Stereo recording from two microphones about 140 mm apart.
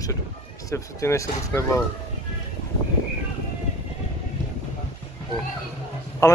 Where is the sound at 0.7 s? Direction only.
20° left (ahead or behind).